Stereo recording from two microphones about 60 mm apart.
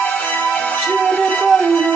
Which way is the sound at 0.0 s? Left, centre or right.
Left.